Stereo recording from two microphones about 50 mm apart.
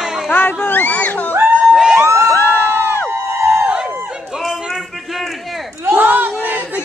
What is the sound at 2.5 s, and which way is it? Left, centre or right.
Crowd, right.